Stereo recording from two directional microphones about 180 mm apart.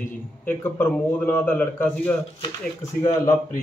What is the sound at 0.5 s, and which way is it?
Speech, 10° left (ahead or behind).